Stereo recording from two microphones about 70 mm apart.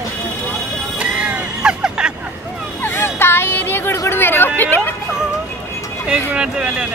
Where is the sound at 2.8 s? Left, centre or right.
Left.